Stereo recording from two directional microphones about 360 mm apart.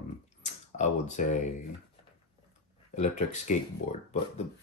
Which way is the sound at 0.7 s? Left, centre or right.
Centre.